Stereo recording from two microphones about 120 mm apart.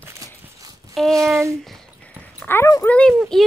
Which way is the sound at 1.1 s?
25° right (ahead or behind).